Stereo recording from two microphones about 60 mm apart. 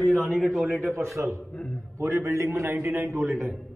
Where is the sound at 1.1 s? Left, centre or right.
Right.